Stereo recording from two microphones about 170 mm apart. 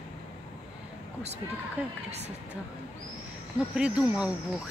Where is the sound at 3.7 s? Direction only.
5° right (ahead or behind).